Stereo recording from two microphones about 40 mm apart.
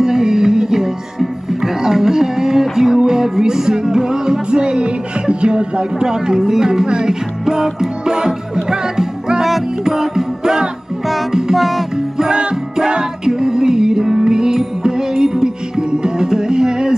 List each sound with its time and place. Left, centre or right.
0.0 s music: centre
11.5 s music: centre
12.2 s music: centre